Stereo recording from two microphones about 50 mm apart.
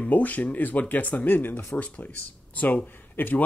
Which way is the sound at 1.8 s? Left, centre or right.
Left.